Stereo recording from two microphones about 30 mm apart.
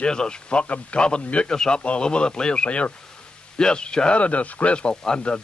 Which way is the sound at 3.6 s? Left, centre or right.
Left.